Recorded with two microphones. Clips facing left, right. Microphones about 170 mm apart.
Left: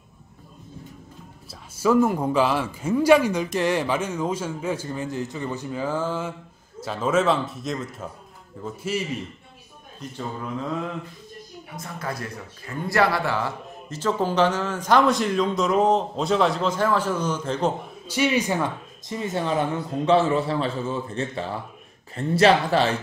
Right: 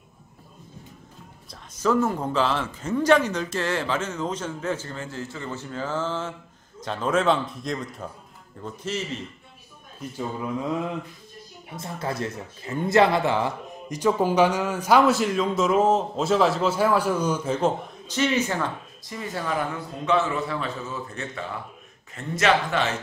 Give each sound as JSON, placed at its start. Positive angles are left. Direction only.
{"t": 1.5, "sound": "speech", "side_deg": 10}
{"t": 9.9, "sound": "speech", "side_deg": -10}
{"t": 11.7, "sound": "speech", "side_deg": -25}
{"t": 18.0, "sound": "speech", "side_deg": 10}